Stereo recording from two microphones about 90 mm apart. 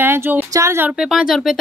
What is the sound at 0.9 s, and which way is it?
Speech, 10° right (ahead or behind).